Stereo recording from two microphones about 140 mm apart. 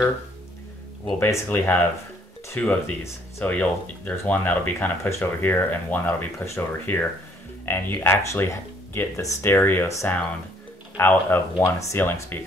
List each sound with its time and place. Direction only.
1.2 s speech: 15° left (ahead or behind)